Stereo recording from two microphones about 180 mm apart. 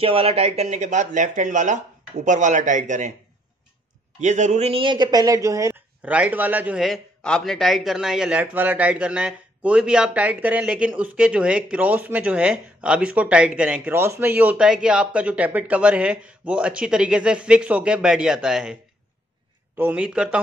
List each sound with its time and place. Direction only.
0.0 s speech: 30° right (ahead or behind)
4.2 s speech: 40° right (ahead or behind); by 18.8 s 5° right (ahead or behind)
19.8 s speech: 5° right (ahead or behind)